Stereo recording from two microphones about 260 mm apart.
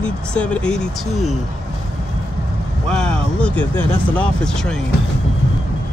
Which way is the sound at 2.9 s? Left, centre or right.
Centre.